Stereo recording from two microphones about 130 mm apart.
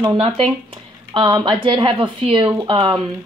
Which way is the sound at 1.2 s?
35° right (ahead or behind).